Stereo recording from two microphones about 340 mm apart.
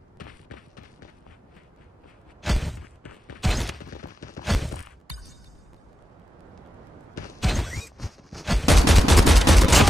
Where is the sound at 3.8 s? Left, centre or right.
Left.